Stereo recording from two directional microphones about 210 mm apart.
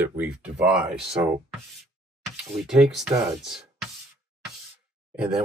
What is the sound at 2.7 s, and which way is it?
Speech, centre (ahead or behind).